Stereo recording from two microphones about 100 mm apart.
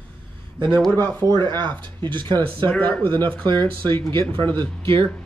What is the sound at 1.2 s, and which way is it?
Speech, 40° right (ahead or behind).